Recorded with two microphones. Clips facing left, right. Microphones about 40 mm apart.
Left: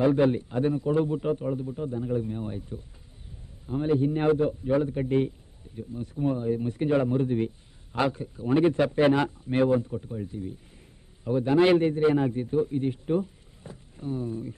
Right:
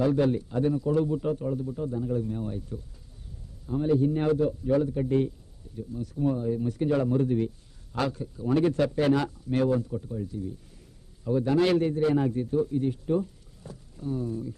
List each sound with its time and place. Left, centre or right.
0.0 s speech: left